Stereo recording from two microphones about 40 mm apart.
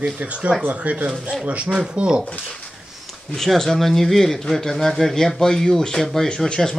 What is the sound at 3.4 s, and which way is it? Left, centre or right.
Speech, centre.